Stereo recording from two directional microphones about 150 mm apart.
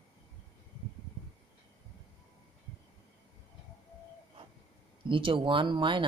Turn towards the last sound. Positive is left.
turn(degrees=-35)  # may be behind; listen again after turning